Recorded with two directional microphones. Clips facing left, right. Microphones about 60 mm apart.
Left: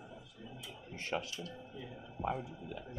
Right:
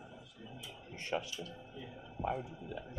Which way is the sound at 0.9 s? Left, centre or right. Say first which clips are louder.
Even; left.